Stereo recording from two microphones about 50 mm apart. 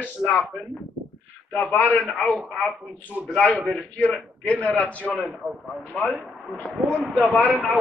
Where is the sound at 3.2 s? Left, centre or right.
Right.